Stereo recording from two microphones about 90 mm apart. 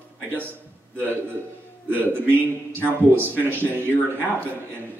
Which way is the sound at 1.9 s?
20° right (ahead or behind).